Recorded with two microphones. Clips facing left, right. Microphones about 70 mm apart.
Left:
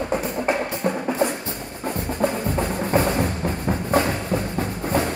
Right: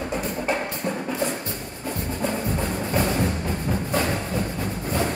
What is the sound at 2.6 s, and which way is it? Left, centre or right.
Music, left.